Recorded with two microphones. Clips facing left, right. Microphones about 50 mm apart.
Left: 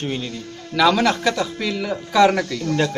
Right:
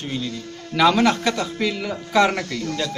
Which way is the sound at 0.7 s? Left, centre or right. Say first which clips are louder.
Even; centre.